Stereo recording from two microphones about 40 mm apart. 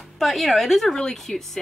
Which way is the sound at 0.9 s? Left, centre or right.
Centre.